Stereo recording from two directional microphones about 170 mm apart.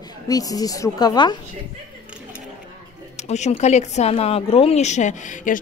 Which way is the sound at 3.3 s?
40° left (ahead or behind).